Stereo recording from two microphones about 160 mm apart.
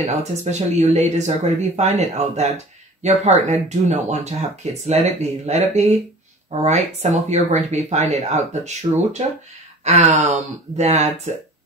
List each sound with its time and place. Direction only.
0.0 s speech: 45° right (ahead or behind)